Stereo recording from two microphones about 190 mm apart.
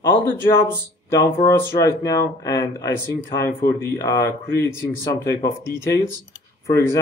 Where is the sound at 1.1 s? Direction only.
15° left (ahead or behind).